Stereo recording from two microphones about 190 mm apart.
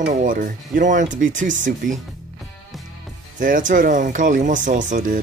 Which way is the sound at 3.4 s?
45° right (ahead or behind).